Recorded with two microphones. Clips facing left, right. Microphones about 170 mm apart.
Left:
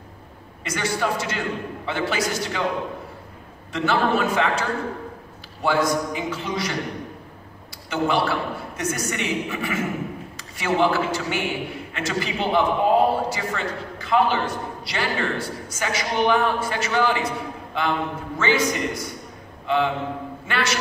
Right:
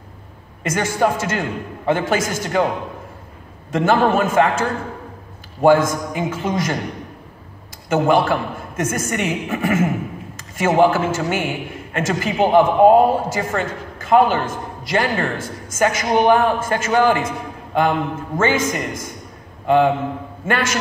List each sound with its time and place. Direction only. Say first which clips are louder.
0.7 s a man's voice: right 6 dB; 45° right (ahead or behind)
3.7 s a man's voice: right 5 dB; 45° right (ahead or behind)
7.9 s a man's voice: right 6 dB; 45° right (ahead or behind)